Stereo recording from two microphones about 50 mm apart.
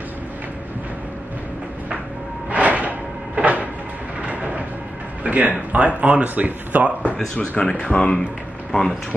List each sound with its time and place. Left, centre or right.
2.5 s music: right
4.2 s train: right
5.2 s speech: right
7.3 s speech: left